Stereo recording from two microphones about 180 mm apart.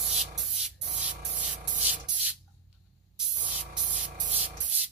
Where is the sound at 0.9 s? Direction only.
45° right (ahead or behind).